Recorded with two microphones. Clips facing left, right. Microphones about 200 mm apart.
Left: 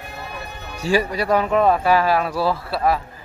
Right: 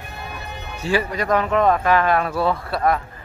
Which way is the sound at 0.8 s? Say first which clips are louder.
Left 2 dB; 10° left (ahead or behind).